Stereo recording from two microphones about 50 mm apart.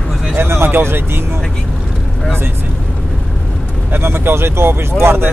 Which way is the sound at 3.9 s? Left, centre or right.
Right.